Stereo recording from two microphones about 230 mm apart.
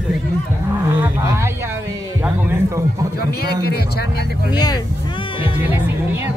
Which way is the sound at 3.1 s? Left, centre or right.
Left.